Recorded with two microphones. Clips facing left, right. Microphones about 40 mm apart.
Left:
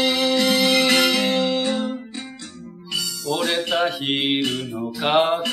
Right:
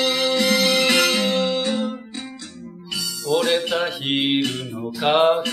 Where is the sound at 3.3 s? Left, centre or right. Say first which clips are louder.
Right 2 dB; centre.